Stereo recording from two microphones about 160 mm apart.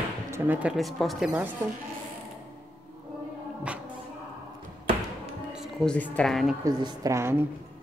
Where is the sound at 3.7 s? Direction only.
5° right (ahead or behind).